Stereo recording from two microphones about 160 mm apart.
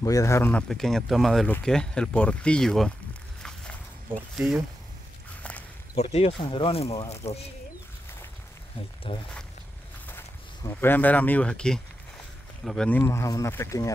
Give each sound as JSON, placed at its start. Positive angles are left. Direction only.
{"t": 0.0, "sound": "speech", "side_deg": 20}
{"t": 4.4, "sound": "speech", "side_deg": 0}
{"t": 6.0, "sound": "speech", "side_deg": 40}
{"t": 9.1, "sound": "speech", "side_deg": 35}
{"t": 10.6, "sound": "speech", "side_deg": 15}